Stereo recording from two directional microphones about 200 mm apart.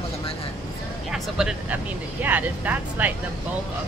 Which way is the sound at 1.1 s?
5° right (ahead or behind).